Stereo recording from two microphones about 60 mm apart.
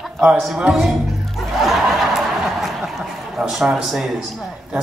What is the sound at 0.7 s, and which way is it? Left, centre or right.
Speech, centre.